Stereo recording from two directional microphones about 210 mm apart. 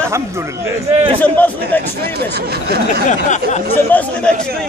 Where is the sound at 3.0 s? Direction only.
35° left (ahead or behind).